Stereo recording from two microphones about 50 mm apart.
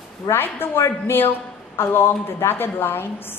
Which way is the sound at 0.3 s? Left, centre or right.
Left.